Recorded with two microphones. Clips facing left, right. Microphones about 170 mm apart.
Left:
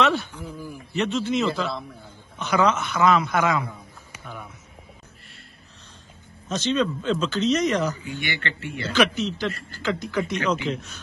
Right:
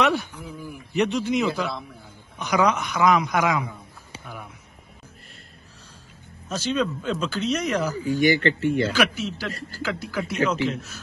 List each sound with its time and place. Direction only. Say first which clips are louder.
0.0 s a man's voice: even; 15° right (ahead or behind)
6.5 s speech: left 1 dB; 10° right (ahead or behind)
8.0 s speech: right 11 dB; 40° right (ahead or behind)
8.9 s a man's voice: left 2 dB; 10° right (ahead or behind)